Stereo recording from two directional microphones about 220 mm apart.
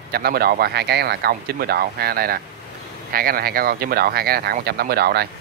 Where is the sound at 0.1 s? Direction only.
45° right (ahead or behind).